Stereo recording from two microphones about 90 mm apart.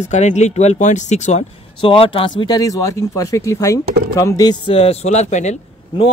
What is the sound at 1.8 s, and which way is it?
Speech, 85° left.